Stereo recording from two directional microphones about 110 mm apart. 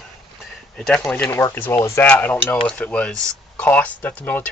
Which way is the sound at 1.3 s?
20° left (ahead or behind).